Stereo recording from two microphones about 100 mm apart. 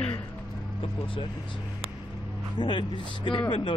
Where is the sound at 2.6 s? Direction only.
50° left (ahead or behind).